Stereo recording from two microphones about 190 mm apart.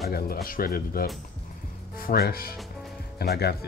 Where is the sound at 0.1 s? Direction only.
50° left (ahead or behind).